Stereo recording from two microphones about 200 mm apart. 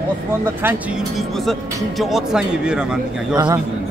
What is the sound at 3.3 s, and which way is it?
Speech, 20° right (ahead or behind).